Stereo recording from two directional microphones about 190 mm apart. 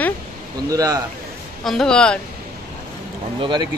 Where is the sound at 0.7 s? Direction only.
20° right (ahead or behind).